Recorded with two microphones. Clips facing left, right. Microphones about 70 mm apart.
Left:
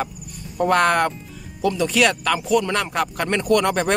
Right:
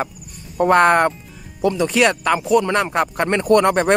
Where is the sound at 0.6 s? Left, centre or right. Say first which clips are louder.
Right 4 dB; right.